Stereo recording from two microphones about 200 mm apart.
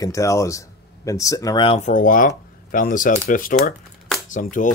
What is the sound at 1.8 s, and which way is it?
Speech, 40° left (ahead or behind).